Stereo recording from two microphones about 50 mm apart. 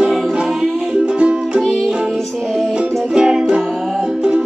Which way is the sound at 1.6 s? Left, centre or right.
Centre.